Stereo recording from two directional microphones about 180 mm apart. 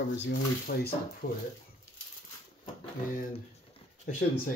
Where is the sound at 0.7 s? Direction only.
65° left (ahead or behind).